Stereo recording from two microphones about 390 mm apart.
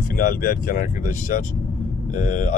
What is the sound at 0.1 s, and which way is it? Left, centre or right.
Speech, left.